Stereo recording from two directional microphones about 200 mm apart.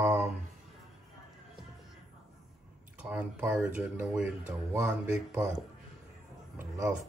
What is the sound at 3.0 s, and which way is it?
Speech, 5° right (ahead or behind).